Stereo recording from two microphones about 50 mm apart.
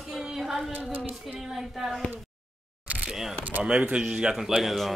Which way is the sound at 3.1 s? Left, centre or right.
Centre.